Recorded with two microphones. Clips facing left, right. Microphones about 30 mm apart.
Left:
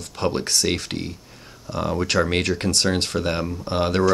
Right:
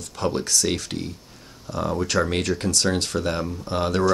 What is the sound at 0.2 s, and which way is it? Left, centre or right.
Speech, left.